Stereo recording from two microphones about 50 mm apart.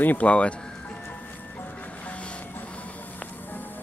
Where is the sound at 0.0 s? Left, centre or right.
Left.